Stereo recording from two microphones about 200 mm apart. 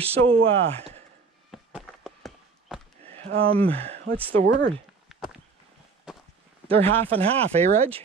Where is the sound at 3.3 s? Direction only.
30° right (ahead or behind).